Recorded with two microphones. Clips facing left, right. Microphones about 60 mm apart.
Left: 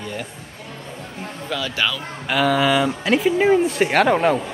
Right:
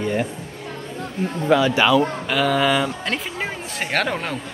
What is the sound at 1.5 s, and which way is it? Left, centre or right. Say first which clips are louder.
Speech: right 8 dB; right.